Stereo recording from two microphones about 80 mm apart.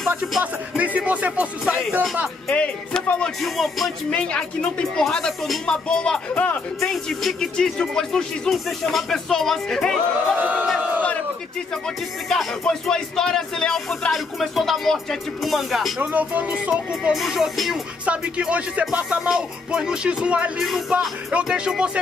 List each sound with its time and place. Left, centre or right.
0.4 s speech: centre
1.7 s music: centre
2.4 s speech: centre
3.4 s speech: centre
4.1 s speech: centre
6.8 s speech: centre
10.3 s speech: centre
12.3 s speech: centre
16.0 s speech: centre
16.6 s music: centre
17.1 s speech: centre
18.0 s music: centre